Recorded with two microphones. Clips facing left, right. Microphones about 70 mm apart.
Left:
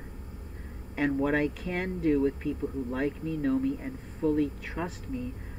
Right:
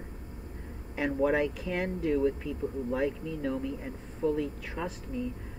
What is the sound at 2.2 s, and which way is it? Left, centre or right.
Speech, left.